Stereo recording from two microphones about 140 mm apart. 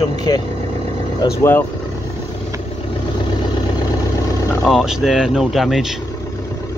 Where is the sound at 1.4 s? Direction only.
15° left (ahead or behind).